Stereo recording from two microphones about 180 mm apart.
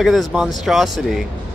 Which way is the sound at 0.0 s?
Centre (ahead or behind).